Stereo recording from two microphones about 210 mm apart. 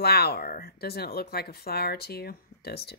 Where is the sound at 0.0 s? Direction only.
50° left (ahead or behind).